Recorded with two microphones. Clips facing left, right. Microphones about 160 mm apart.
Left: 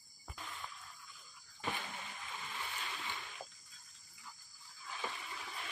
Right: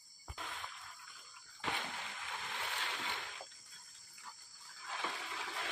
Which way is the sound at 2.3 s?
70° right (ahead or behind).